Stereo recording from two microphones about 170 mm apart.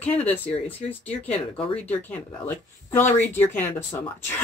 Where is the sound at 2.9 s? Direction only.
15° left (ahead or behind).